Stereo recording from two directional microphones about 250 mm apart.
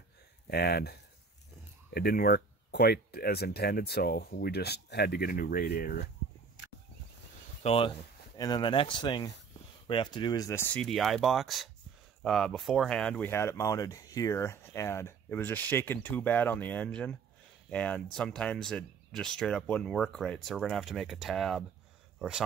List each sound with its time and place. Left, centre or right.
0.5 s speech: left
2.0 s speech: left
7.6 s speech: left; by 21.6 s centre